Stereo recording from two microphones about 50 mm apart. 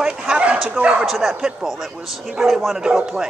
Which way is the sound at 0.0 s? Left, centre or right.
Right.